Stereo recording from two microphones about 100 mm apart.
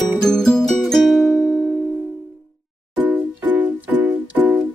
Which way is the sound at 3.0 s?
15° right (ahead or behind).